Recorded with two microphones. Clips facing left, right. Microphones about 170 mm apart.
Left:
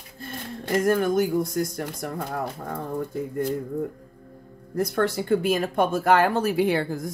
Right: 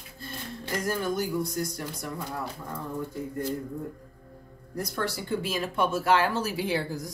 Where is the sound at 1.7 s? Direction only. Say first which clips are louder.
Left 5 dB; 55° left (ahead or behind).